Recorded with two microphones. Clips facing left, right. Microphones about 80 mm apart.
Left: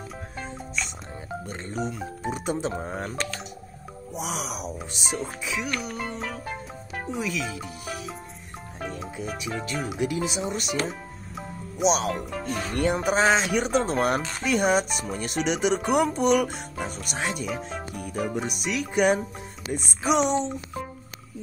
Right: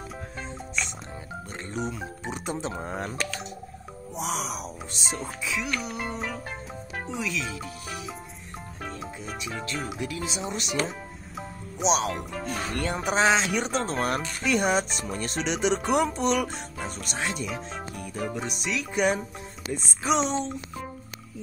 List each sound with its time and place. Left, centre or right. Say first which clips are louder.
2.2 s speech: left 4 dB; centre
4.1 s speech: right 1 dB; centre
9.0 s speech: left 3 dB; centre
10.4 s speech: left 2 dB; centre
10.9 s music: left 2 dB; centre
12.5 s speech: left 6 dB; centre
17.5 s music: left 2 dB; centre
18.2 s speech: left 2 dB; centre
20.2 s speech: left 4 dB; centre